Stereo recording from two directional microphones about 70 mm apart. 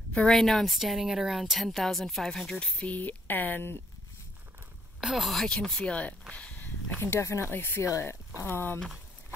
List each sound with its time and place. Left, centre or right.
0.1 s a woman's voice: centre
2.8 s speech: left
5.0 s a woman's voice: centre
5.5 s speech: centre
6.3 s a sound: centre
7.0 s speech: left
7.5 s speech: left